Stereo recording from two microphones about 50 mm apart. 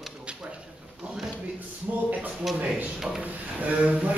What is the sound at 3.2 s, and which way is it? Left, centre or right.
Drawer open or close, right.